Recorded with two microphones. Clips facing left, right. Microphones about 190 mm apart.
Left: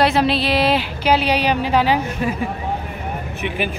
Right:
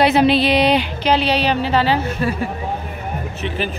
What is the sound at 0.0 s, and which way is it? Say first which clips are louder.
Speech: right 3 dB; centre (ahead or behind).